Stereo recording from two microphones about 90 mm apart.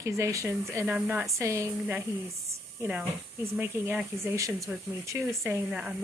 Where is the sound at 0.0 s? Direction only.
35° right (ahead or behind).